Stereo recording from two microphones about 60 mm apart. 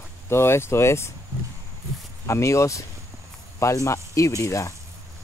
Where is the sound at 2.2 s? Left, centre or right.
Left.